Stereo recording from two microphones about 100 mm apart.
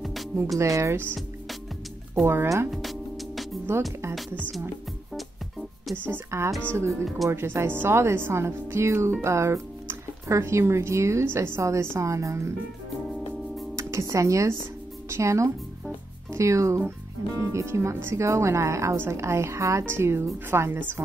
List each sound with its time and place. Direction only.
0.0 s music: centre (ahead or behind)
0.6 s speech: 30° right (ahead or behind)
2.2 s speech: 25° right (ahead or behind)
2.7 s music: centre (ahead or behind)
3.7 s speech: 25° right (ahead or behind)
5.1 s music: centre (ahead or behind)
6.0 s speech: 25° right (ahead or behind)
13.7 s speech: 30° right (ahead or behind)